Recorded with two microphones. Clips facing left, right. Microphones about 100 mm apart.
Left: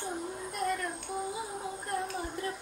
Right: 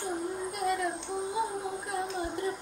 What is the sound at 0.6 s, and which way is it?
Child singing, 5° right (ahead or behind).